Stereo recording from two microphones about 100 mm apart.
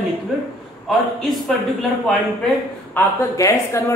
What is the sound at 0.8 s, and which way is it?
A man's voice, centre (ahead or behind).